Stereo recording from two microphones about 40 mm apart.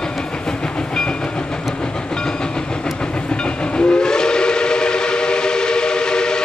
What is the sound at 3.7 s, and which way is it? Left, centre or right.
Steam whistle, left.